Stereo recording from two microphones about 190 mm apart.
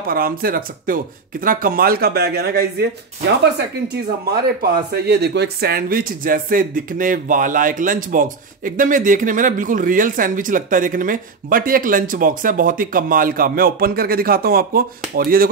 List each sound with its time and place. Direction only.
0.1 s speech: 50° right (ahead or behind)
4.6 s speech: 55° right (ahead or behind)